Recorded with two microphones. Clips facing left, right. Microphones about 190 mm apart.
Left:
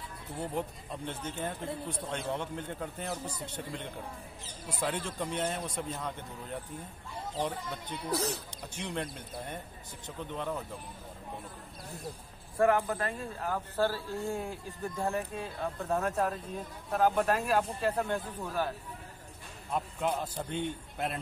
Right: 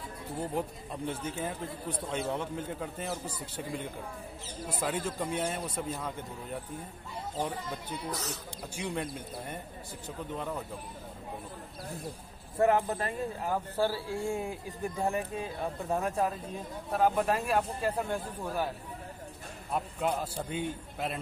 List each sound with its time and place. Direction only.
0.4 s a man's voice: 10° right (ahead or behind)
7.3 s a man's voice: 5° right (ahead or behind)
8.1 s speech: 30° left (ahead or behind)
8.7 s a man's voice: 5° right (ahead or behind)
12.5 s a man's voice: 20° right (ahead or behind)
19.7 s a man's voice: 5° right (ahead or behind)